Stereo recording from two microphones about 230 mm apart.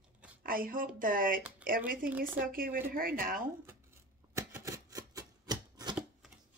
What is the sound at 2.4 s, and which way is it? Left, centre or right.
Speech, right.